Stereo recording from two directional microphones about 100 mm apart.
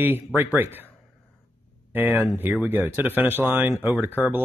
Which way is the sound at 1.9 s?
20° right (ahead or behind).